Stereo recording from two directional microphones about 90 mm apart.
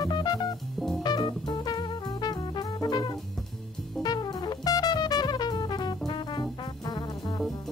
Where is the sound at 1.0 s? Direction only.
55° left (ahead or behind).